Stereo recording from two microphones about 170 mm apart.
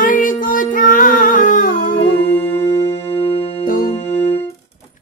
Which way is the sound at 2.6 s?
15° left (ahead or behind).